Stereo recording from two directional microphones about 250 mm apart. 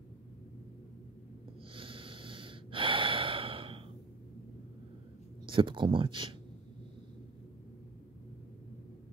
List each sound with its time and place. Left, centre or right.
1.8 s snort: right
5.5 s speech: centre